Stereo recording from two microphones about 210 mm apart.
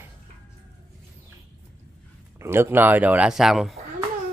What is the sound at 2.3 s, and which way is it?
Speech, 10° right (ahead or behind).